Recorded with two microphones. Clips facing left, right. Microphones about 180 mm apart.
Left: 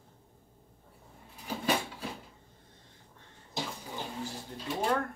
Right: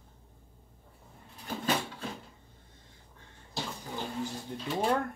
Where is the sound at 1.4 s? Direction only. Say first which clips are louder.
Even; 10° left (ahead or behind).